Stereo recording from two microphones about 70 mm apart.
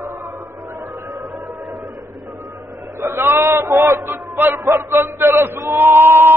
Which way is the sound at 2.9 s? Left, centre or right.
Right.